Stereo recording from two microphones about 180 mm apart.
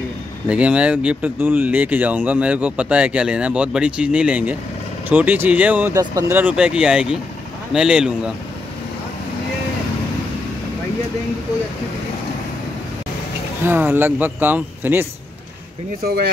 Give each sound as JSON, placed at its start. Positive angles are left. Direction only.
{"t": 0.5, "sound": "speech", "side_deg": -5}
{"t": 13.7, "sound": "speech", "side_deg": -10}
{"t": 16.0, "sound": "speech", "side_deg": -60}